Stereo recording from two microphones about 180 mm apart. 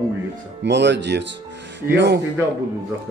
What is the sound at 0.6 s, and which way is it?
Speech, 75° right (ahead or behind).